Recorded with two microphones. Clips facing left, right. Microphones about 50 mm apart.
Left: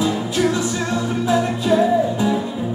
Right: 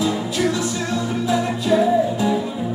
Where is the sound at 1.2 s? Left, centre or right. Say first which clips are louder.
Left 2 dB; centre.